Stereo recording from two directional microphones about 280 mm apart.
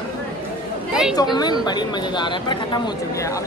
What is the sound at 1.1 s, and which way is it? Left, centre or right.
Speech, centre.